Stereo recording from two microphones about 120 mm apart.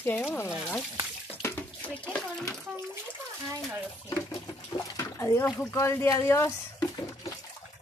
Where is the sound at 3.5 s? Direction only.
15° right (ahead or behind).